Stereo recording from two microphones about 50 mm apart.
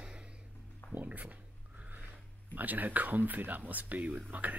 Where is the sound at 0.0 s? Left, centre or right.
Centre.